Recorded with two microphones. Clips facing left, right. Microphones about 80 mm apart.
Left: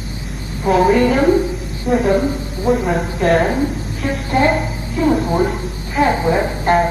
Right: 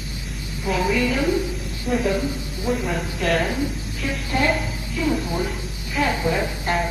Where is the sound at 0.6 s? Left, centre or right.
Left.